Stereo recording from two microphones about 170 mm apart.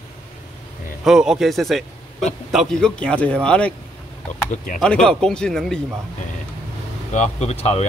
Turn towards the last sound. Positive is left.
turn(degrees=40)  # may be behind; listen again after turning